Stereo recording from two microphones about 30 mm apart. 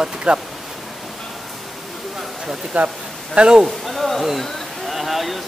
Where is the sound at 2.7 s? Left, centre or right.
Right.